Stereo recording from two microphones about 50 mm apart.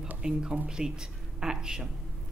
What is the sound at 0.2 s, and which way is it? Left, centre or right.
A woman's voice, centre.